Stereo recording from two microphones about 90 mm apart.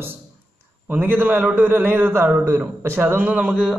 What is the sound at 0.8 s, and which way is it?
Speech, 20° right (ahead or behind).